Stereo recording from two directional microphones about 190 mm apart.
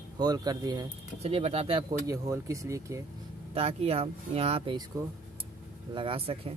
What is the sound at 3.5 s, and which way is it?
Speech, 30° right (ahead or behind).